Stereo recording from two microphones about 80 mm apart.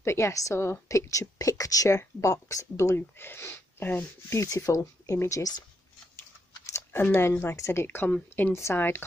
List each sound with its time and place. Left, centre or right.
0.0 s a woman's voice: left
2.0 s a woman's voice: left
4.4 s a woman's voice: left
6.6 s speech: left